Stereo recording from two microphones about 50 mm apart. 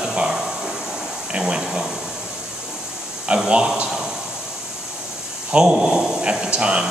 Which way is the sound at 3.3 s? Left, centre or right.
Centre.